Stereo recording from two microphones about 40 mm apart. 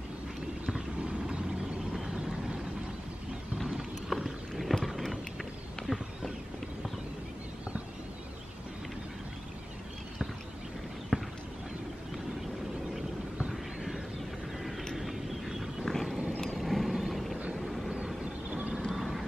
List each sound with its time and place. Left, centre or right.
4.1 s a sound: centre
11.1 s clip-clop: centre
15.0 s vehicle: centre
15.8 s a sound: centre
16.5 s vehicle: centre
18.2 s vehicle: right
18.9 s vehicle: centre